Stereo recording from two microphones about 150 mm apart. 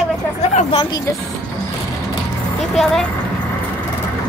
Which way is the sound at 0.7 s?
35° left (ahead or behind).